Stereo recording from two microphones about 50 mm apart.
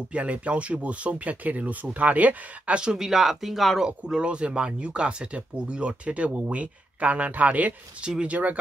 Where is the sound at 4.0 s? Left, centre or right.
Centre.